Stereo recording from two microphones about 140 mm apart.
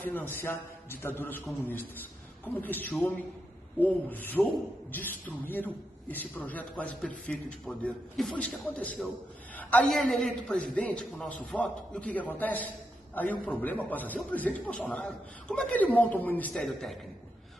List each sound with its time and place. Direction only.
0.0 s a man's voice: 15° left (ahead or behind)
16.6 s a man's voice: centre (ahead or behind)